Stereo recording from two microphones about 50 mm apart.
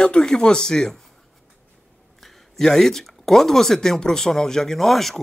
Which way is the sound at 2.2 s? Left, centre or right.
Centre.